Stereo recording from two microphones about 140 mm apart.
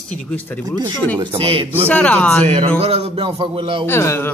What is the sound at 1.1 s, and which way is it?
Speech, 35° right (ahead or behind).